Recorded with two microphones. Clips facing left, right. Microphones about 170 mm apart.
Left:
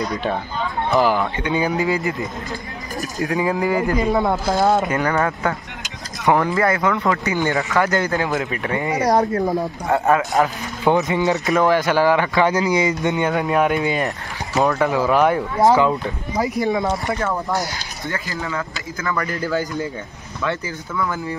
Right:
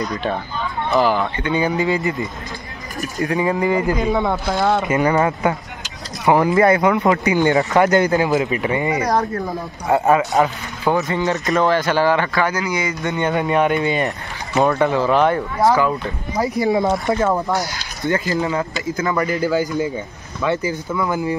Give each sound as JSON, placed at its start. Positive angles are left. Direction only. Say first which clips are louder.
{"t": 1.0, "sound": "speech", "louder": "even", "side_deg": 5}
{"t": 4.9, "sound": "speech", "louder": "right 3 dB", "side_deg": -15}
{"t": 6.2, "sound": "speech", "louder": "right 2 dB", "side_deg": -5}
{"t": 6.5, "sound": "speech", "louder": "right 5 dB", "side_deg": -20}
{"t": 8.2, "sound": "speech", "louder": "right 4 dB", "side_deg": -5}
{"t": 9.0, "sound": "speech", "louder": "left 2 dB", "side_deg": 20}
{"t": 9.8, "sound": "speech", "louder": "right 3 dB", "side_deg": -5}
{"t": 10.8, "sound": "speech", "louder": "left 1 dB", "side_deg": 20}
{"t": 13.2, "sound": "speech", "louder": "right 3 dB", "side_deg": 0}
{"t": 15.6, "sound": "speech", "louder": "left 1 dB", "side_deg": 20}
{"t": 16.6, "sound": "speech", "louder": "right 3 dB", "side_deg": -20}
{"t": 19.2, "sound": "speech", "louder": "right 4 dB", "side_deg": 0}
{"t": 20.4, "sound": "speech", "louder": "right 5 dB", "side_deg": -15}